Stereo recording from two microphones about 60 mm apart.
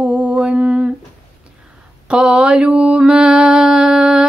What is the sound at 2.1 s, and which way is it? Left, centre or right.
Mantra, centre.